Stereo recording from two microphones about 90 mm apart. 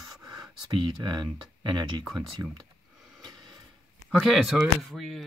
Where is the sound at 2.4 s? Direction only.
35° right (ahead or behind).